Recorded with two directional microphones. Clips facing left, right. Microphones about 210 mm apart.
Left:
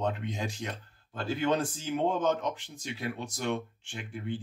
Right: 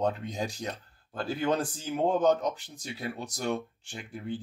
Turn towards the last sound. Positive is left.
turn(degrees=-40)  # may be behind; listen again after turning